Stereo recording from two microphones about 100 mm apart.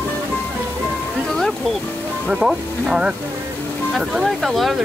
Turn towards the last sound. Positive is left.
turn(degrees=0)  # may be behind; listen again after turning